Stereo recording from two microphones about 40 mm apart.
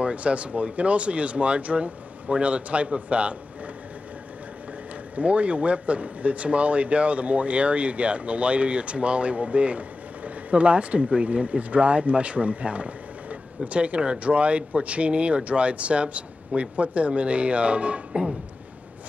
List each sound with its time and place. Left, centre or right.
0.0 s speech: right
5.1 s speech: right